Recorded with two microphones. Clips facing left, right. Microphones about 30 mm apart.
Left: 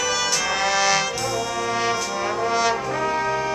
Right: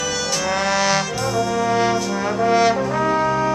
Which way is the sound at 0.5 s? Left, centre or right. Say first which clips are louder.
Right 3 dB; centre.